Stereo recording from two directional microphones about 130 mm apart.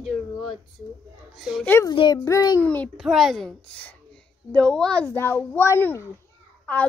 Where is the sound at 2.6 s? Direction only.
15° left (ahead or behind).